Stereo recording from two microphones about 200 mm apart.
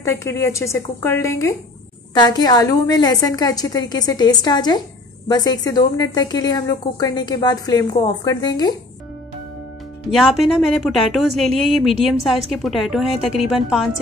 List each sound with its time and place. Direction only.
0.0 s a woman's voice: 15° left (ahead or behind)
10.1 s a woman's voice: centre (ahead or behind)